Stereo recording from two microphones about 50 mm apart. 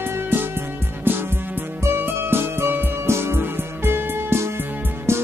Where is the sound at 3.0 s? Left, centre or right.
Right.